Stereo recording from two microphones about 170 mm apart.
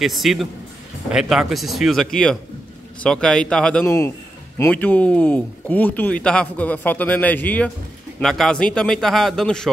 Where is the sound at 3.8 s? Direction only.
20° left (ahead or behind).